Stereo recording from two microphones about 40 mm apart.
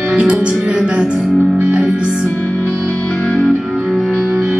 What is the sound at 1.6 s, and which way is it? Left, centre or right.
Music, right.